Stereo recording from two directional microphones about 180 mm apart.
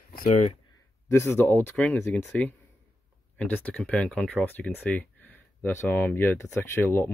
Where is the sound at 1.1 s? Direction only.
15° left (ahead or behind).